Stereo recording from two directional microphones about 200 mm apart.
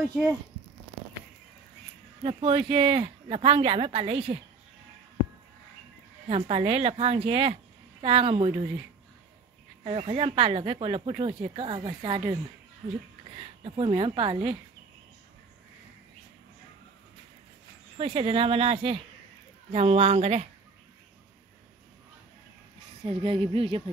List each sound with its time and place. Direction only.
0.0 s speech: 5° right (ahead or behind)
2.2 s speech: 25° right (ahead or behind)
6.2 s speech: 30° right (ahead or behind)
9.8 s speech: 25° right (ahead or behind)
13.4 s speech: 25° right (ahead or behind)
17.9 s a woman's voice: 30° right (ahead or behind)
23.0 s speech: 25° right (ahead or behind)